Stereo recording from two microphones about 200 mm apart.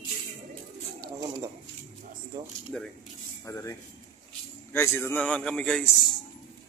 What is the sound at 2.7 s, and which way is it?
Speech, 5° left (ahead or behind).